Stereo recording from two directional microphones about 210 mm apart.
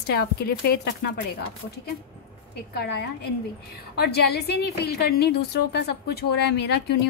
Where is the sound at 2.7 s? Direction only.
50° left (ahead or behind).